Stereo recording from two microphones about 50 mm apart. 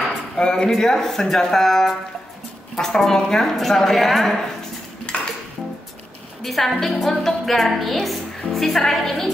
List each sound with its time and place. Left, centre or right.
0.4 s a woman's voice: centre
5.1 s cutlery: left
6.4 s a woman's voice: centre